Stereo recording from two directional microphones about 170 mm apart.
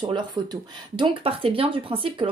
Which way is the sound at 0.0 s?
25° right (ahead or behind).